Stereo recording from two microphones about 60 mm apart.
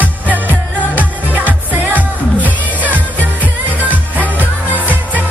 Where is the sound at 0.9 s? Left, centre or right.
Right.